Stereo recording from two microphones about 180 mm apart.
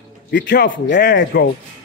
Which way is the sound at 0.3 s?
75° left (ahead or behind).